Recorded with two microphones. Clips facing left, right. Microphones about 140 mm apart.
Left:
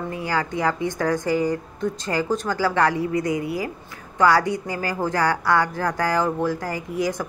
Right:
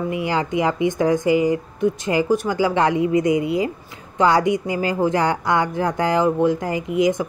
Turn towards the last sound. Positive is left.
turn(degrees=-20)  # may be behind; listen again after turning